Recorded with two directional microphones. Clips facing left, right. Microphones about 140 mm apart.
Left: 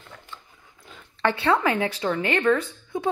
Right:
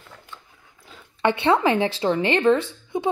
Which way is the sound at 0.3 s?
5° right (ahead or behind).